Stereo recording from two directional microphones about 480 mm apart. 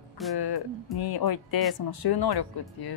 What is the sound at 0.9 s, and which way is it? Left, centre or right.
Speech, left.